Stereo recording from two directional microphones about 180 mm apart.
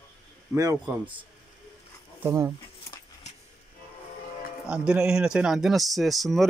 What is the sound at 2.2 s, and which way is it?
Speech, 15° right (ahead or behind).